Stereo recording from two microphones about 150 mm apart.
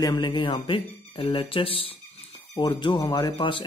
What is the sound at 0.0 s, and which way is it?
Speech, 30° left (ahead or behind).